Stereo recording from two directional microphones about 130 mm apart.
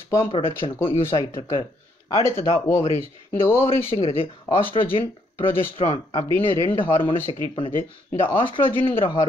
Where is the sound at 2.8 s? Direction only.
50° left (ahead or behind).